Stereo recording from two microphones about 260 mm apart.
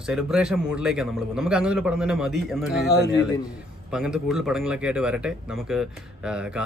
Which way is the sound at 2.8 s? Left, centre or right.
Left.